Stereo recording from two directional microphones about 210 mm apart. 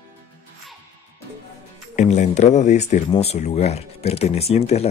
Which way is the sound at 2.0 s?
35° left (ahead or behind).